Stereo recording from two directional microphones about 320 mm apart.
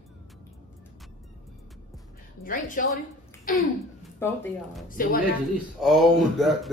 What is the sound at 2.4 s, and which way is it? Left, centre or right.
Speech, left.